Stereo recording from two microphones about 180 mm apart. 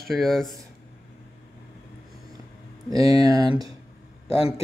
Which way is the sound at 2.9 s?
20° right (ahead or behind).